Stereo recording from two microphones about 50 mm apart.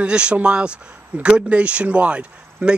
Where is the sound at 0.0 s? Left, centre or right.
Right.